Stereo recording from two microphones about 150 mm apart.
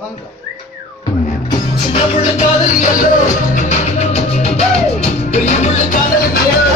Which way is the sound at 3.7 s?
45° left (ahead or behind).